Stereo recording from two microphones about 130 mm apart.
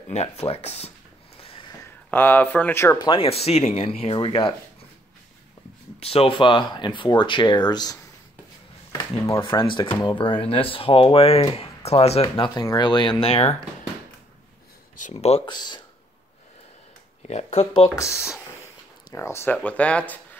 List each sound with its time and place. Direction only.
0.1 s speech: 55° left (ahead or behind)
1.4 s a sound: 45° left (ahead or behind)
2.0 s speech: 15° left (ahead or behind)
3.0 s speech: 40° left (ahead or behind)
5.9 s speech: 50° left (ahead or behind); by 8.0 s 30° left (ahead or behind)
8.9 s a sound: 25° left (ahead or behind)
9.4 s speech: 40° left (ahead or behind)
12.5 s speech: 35° left (ahead or behind)
13.3 s speech: 50° left (ahead or behind)
15.1 s speech: 50° left (ahead or behind)
15.4 s speech: 35° left (ahead or behind)
17.2 s speech: 60° left (ahead or behind)
17.9 s speech: 25° left (ahead or behind)